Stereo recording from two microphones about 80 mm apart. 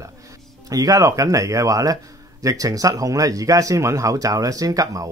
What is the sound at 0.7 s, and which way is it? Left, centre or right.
Speech, right.